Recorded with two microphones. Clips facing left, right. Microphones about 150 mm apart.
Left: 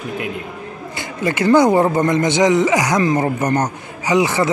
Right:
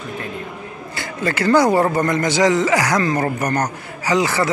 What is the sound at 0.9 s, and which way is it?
Speech, 20° left (ahead or behind).